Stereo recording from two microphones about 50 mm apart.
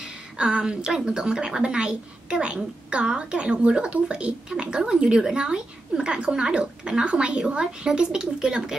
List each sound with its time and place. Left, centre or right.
0.0 s a woman's voice: centre